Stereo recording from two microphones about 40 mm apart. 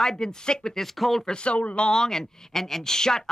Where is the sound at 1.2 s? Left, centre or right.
Left.